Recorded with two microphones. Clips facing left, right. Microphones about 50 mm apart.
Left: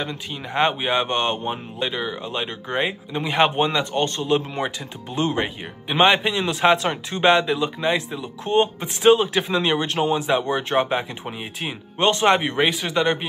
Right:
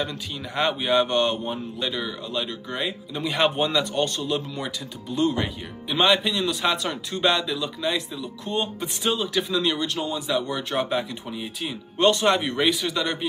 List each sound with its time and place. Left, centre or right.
0.6 s speech: left